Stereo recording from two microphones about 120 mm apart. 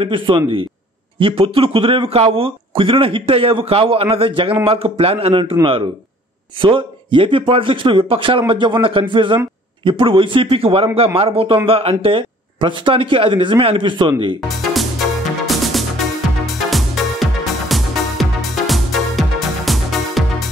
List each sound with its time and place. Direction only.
0.0 s a man's voice: 45° right (ahead or behind)
14.6 s music: centre (ahead or behind)